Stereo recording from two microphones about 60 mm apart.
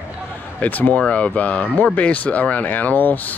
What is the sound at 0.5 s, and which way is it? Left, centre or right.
Speech, left.